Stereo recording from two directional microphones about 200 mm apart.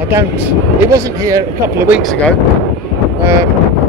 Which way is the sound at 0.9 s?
15° right (ahead or behind).